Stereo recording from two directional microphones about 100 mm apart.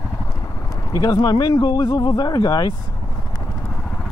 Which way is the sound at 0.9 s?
40° left (ahead or behind).